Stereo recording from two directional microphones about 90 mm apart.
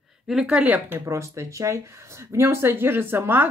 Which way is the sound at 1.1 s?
35° right (ahead or behind).